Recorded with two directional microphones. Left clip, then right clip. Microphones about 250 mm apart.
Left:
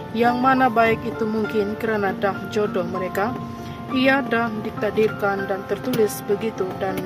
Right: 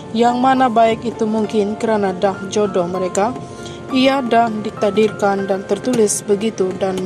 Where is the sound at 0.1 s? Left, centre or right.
Centre.